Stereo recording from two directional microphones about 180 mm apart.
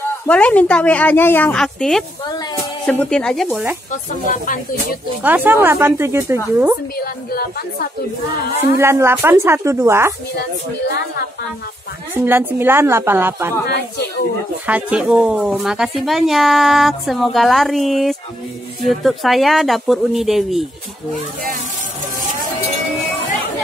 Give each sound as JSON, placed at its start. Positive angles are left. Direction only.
{"t": 0.3, "sound": "a woman's voice", "side_deg": 10}
{"t": 3.9, "sound": "speech", "side_deg": 50}
{"t": 5.2, "sound": "speech", "side_deg": -10}
{"t": 7.0, "sound": "speech", "side_deg": 55}
{"t": 8.7, "sound": "speech", "side_deg": -15}
{"t": 12.2, "sound": "speech", "side_deg": -10}
{"t": 14.7, "sound": "speech", "side_deg": -5}